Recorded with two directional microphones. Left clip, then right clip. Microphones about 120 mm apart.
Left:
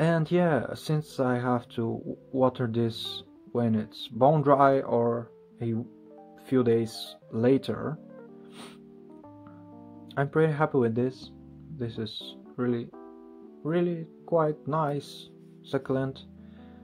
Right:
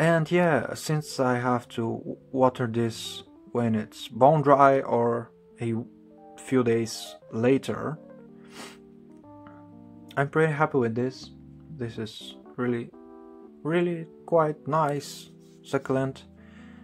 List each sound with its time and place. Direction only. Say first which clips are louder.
0.0 s speech: right 3 dB; 10° right (ahead or behind)
5.0 s speech: right 2 dB; 25° right (ahead or behind)
6.4 s speech: even; 15° right (ahead or behind)
10.1 s speech: right 2 dB; 10° right (ahead or behind)